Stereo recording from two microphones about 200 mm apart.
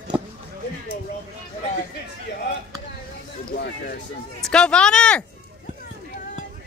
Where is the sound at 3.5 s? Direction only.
50° left (ahead or behind).